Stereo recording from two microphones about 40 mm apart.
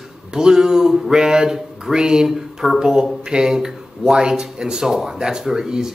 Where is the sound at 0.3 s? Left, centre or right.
Centre.